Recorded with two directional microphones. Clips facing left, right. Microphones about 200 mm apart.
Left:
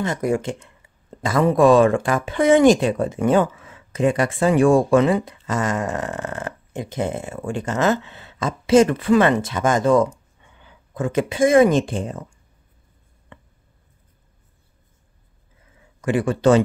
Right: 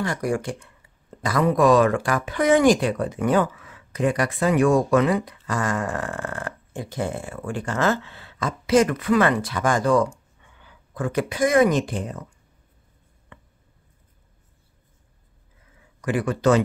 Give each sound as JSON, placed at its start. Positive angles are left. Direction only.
{"t": 0.0, "sound": "speech", "side_deg": 20}
{"t": 16.0, "sound": "speech", "side_deg": 25}